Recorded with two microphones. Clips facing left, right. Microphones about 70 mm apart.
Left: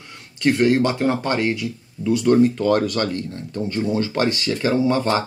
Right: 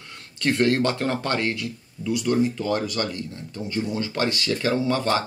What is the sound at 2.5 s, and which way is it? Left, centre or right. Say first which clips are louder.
Speech: left 6 dB; left.